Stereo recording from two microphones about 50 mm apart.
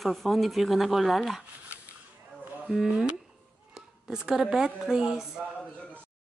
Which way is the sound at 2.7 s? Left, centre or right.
Centre.